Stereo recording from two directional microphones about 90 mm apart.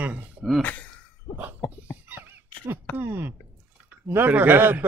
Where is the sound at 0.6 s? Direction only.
15° left (ahead or behind).